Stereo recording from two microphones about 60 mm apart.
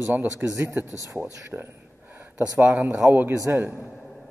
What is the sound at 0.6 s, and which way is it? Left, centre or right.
A woman's voice, right.